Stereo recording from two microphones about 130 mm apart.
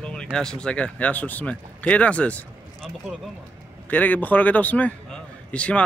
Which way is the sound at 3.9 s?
10° left (ahead or behind).